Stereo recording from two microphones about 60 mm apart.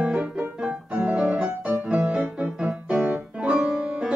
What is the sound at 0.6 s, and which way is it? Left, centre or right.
Music, centre.